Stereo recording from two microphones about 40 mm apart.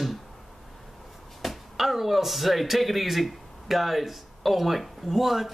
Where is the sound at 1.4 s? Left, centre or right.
Centre.